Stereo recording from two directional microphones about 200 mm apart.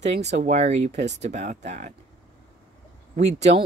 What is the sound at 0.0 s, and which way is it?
Speech, 35° right (ahead or behind).